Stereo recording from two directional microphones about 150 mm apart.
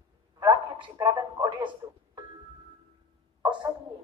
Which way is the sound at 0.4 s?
25° right (ahead or behind).